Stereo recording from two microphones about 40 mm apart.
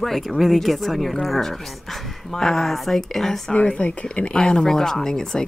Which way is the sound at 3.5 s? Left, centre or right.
Left.